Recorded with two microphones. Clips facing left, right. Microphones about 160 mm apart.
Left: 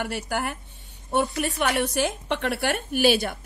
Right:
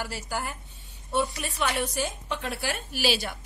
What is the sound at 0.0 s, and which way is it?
A woman's voice, 65° left (ahead or behind).